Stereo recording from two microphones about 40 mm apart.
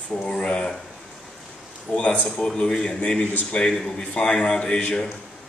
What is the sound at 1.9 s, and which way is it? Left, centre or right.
Speech, left.